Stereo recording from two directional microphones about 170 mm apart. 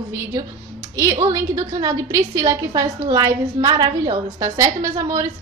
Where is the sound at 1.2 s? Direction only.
20° right (ahead or behind).